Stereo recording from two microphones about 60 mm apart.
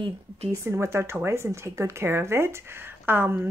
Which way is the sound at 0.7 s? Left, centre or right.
Right.